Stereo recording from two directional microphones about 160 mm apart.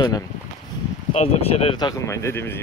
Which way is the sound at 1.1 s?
40° left (ahead or behind).